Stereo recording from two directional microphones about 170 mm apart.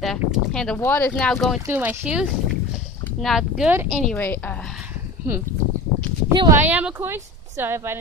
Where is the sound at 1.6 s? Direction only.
10° right (ahead or behind).